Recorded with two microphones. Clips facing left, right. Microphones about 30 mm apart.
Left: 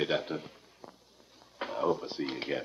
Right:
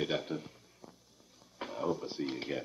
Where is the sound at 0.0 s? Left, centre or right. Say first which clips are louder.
Left 3 dB; left.